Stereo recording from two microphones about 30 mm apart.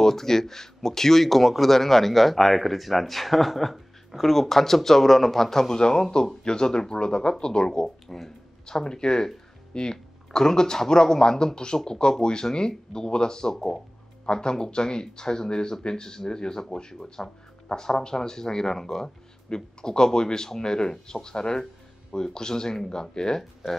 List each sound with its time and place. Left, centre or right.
0.0 s a man's voice: centre
5.8 s speech: left
7.8 s a man's voice: centre
8.6 s speech: left